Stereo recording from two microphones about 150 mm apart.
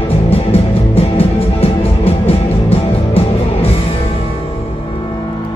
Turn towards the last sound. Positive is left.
turn(degrees=40)  # may be behind; listen again after turning